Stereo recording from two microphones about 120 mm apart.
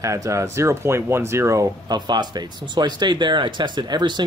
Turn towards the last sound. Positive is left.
turn(degrees=-40)  # may be behind; listen again after turning